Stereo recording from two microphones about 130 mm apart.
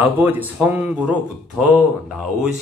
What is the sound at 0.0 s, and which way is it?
Speech, 15° right (ahead or behind).